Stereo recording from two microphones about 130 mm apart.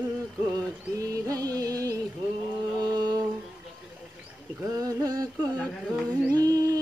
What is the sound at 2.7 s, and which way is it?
Mantra, 30° right (ahead or behind).